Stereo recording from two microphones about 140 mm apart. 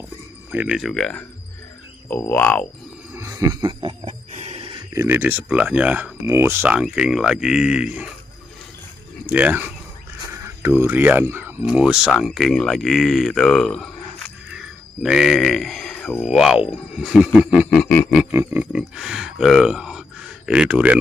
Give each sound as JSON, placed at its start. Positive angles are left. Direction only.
{"t": 0.5, "sound": "speech", "side_deg": -10}
{"t": 2.0, "sound": "cricket", "side_deg": 15}
{"t": 3.1, "sound": "wild animals", "side_deg": -20}
{"t": 4.3, "sound": "a sound", "side_deg": -50}
{"t": 4.9, "sound": "speech", "side_deg": -15}
{"t": 9.3, "sound": "speech", "side_deg": -10}
{"t": 11.6, "sound": "speech", "side_deg": -5}
{"t": 15.0, "sound": "speech", "side_deg": 0}
{"t": 16.3, "sound": "speech", "side_deg": -5}
{"t": 17.6, "sound": "speech", "side_deg": 5}
{"t": 18.3, "sound": "speech", "side_deg": -15}